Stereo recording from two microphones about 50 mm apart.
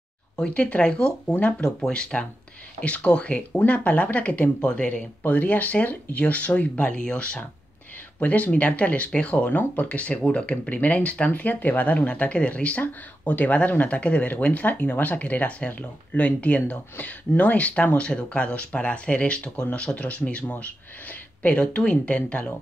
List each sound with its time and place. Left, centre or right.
0.4 s speech: left
5.2 s speech: left; by 7.4 s centre
8.2 s speech: left